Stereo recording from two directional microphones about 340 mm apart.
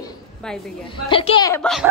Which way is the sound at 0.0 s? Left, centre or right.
Centre.